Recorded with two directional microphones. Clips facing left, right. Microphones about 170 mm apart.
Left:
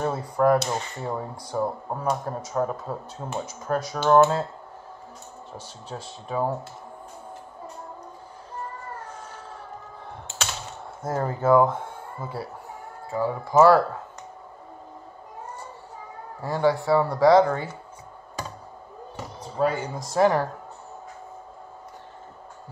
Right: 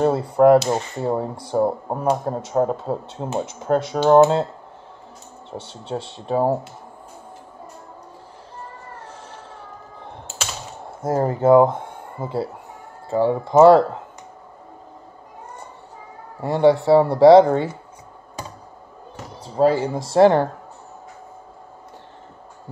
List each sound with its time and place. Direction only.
0.2 s speech: 25° right (ahead or behind)
5.6 s speech: 25° right (ahead or behind)
10.2 s a sound: centre (ahead or behind)
11.0 s speech: 25° right (ahead or behind)
16.4 s speech: 25° right (ahead or behind)
19.4 s speech: 30° right (ahead or behind)